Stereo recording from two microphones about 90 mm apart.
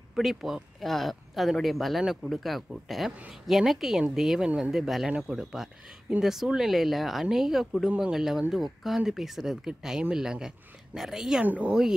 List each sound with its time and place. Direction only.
0.1 s speech: centre (ahead or behind)